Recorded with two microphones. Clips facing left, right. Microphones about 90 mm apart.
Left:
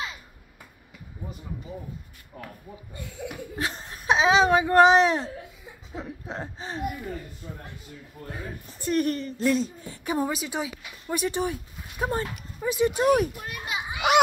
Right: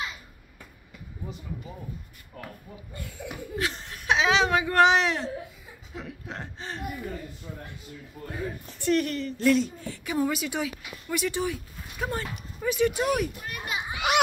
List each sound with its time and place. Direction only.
3.5 s a sound: 30° left (ahead or behind)
5.9 s chuckle: 30° left (ahead or behind)
6.3 s gasp: 10° left (ahead or behind)
8.8 s a woman's voice: 40° left (ahead or behind)
9.4 s speech: 25° left (ahead or behind)
13.7 s children playing: 15° left (ahead or behind)